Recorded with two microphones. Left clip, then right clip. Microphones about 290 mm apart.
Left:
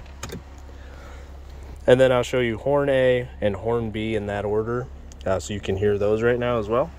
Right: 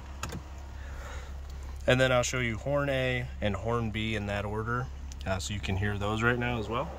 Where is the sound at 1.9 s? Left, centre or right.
Centre.